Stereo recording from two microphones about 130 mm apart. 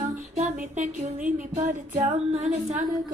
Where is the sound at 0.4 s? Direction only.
70° right (ahead or behind).